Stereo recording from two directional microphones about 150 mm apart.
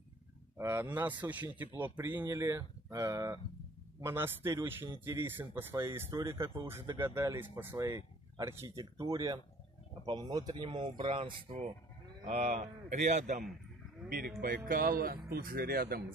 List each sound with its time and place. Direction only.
0.6 s a man's voice: 15° right (ahead or behind); by 13.4 s 50° right (ahead or behind)
14.0 s speech: 75° right (ahead or behind)